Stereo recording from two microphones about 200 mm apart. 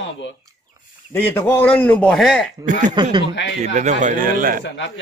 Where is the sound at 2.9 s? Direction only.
20° right (ahead or behind).